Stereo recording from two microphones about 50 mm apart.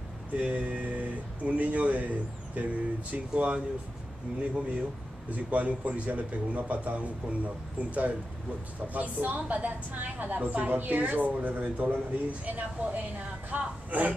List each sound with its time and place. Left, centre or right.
0.4 s a woman's voice: right